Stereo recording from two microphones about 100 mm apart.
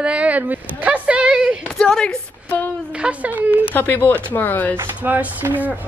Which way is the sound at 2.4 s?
20° left (ahead or behind).